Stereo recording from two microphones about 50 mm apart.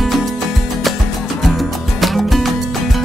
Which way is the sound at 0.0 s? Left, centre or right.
Centre.